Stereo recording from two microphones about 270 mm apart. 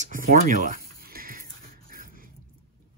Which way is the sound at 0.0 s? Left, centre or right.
Right.